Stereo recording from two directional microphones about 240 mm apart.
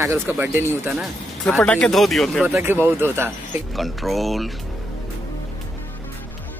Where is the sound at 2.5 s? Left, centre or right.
Centre.